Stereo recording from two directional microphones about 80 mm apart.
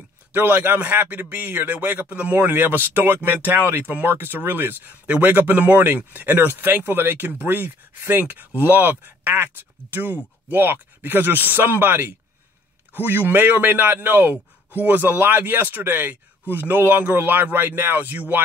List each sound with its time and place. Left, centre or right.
0.3 s speech: right